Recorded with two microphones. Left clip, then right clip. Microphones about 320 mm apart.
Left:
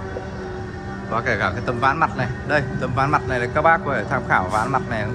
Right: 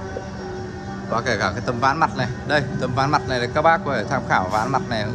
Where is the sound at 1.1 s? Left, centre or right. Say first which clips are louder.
Even; centre.